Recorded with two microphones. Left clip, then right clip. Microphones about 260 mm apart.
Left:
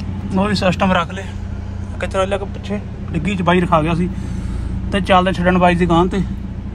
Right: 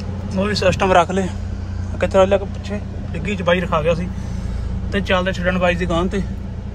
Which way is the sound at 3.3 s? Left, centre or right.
Centre.